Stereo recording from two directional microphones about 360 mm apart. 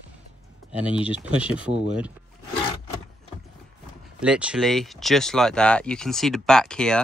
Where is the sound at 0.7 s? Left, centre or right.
Centre.